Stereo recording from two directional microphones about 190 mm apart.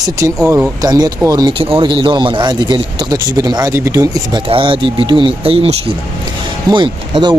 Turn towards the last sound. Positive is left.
turn(degrees=-25)  # may be behind; listen again after turning